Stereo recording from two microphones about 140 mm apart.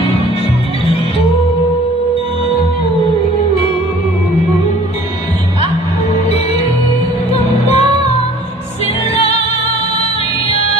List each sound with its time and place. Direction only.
7.3 s music: 50° left (ahead or behind)